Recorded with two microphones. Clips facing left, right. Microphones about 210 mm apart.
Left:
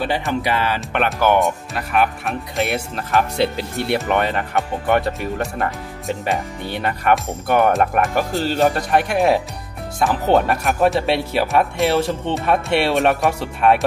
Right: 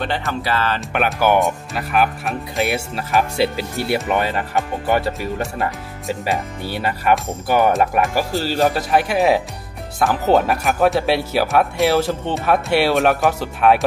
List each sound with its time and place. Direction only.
0.0 s speech: 5° left (ahead or behind)
0.7 s speech: 5° right (ahead or behind)